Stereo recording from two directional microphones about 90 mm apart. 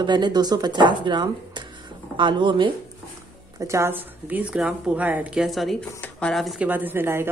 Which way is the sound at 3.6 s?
30° right (ahead or behind).